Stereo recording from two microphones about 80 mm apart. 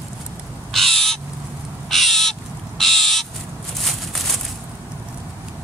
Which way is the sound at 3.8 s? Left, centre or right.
Centre.